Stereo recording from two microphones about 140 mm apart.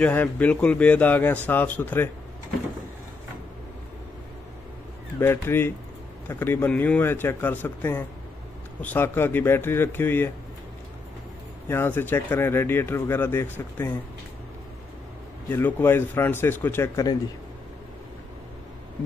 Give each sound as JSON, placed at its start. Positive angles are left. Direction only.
{"t": 0.0, "sound": "speech", "side_deg": 10}
{"t": 5.2, "sound": "speech", "side_deg": 15}
{"t": 11.7, "sound": "speech", "side_deg": 15}
{"t": 15.5, "sound": "speech", "side_deg": 15}